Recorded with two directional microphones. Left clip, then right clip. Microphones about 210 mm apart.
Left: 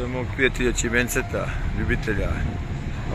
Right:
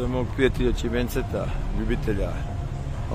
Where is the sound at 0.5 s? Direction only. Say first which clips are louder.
Left 4 dB; centre (ahead or behind).